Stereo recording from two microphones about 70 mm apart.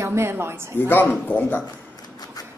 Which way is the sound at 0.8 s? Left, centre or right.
Left.